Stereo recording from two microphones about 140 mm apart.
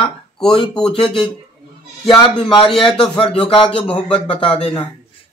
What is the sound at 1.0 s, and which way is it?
Speech, 40° left (ahead or behind).